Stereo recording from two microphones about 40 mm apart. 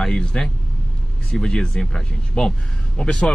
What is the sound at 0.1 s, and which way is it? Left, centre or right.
Speech, centre.